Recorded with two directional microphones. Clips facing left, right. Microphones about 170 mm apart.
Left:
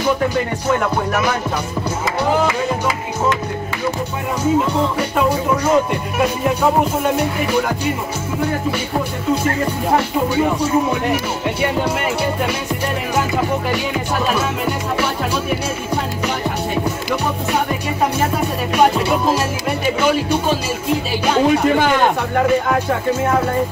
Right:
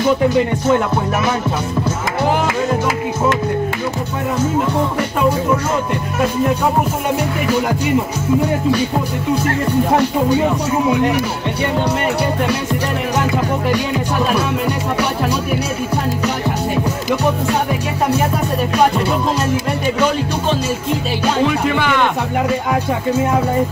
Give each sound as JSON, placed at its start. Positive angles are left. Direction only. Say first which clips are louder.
{"t": 21.5, "sound": "speech", "louder": "left 3 dB", "side_deg": 40}